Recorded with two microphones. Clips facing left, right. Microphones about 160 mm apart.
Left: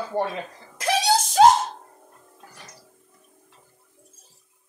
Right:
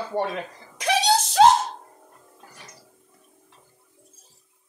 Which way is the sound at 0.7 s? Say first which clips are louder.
Even; 10° left (ahead or behind).